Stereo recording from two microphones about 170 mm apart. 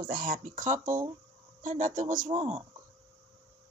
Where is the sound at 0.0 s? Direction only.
60° right (ahead or behind); by 2.6 s 40° right (ahead or behind).